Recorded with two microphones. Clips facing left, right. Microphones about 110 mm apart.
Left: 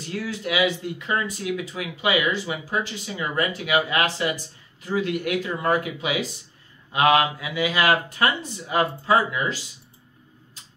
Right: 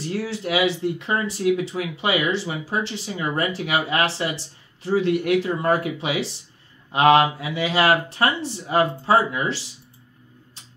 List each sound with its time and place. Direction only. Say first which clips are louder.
0.1 s speech: right 2 dB; 30° right (ahead or behind)